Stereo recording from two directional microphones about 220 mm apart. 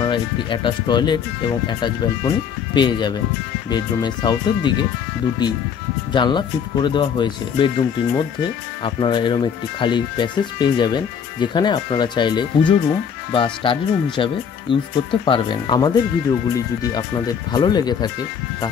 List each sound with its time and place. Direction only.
0.0 s speech: 20° left (ahead or behind)